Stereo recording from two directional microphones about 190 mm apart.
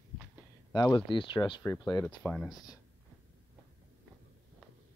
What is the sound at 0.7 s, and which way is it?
Speech, 20° left (ahead or behind).